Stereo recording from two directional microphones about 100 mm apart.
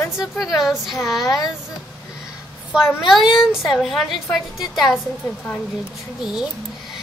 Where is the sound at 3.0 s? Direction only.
Centre (ahead or behind).